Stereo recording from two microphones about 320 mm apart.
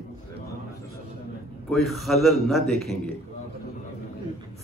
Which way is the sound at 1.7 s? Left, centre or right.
Centre.